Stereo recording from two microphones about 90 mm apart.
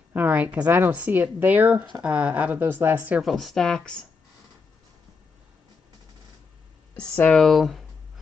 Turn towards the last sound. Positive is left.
turn(degrees=0)  # may be behind; listen again after turning